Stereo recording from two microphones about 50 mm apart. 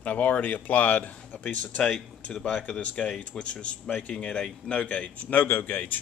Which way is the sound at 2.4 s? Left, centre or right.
Left.